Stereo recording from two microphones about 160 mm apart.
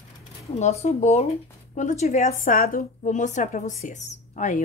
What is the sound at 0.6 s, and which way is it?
A woman's voice, 45° left (ahead or behind).